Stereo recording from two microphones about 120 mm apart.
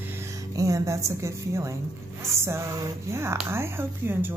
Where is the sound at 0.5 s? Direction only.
25° right (ahead or behind).